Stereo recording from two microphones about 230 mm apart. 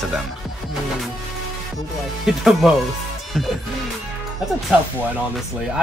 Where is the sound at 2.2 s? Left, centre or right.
Centre.